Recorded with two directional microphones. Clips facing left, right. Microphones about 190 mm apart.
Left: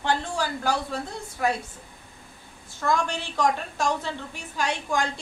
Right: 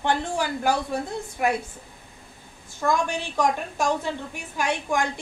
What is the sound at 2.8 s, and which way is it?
A woman's voice, 15° right (ahead or behind).